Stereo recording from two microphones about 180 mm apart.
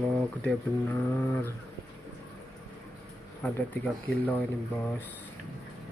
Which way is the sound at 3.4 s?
10° left (ahead or behind).